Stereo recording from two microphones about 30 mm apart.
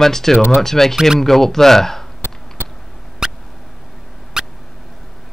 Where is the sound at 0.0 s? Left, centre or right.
Centre.